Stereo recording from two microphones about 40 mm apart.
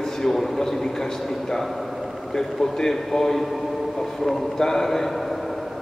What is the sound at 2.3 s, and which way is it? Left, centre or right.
A man's voice, centre.